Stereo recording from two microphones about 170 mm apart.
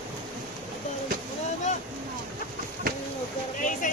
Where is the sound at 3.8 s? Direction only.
45° left (ahead or behind).